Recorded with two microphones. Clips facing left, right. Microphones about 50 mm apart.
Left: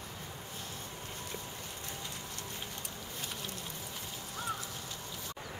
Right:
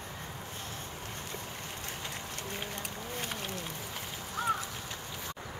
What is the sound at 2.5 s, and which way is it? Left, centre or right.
Boat, right.